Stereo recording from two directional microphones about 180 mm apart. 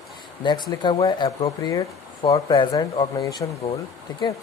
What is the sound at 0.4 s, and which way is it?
Speech, 25° left (ahead or behind).